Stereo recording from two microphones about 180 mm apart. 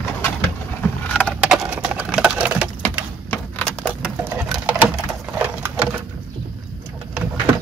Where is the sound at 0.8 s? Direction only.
5° left (ahead or behind).